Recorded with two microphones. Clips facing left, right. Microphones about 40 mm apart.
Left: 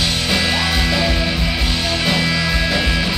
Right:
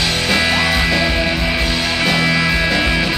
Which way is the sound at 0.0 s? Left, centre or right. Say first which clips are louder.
Right 2 dB; centre.